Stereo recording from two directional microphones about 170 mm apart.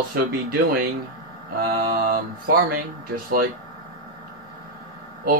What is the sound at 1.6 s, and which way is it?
Speech, 60° right (ahead or behind).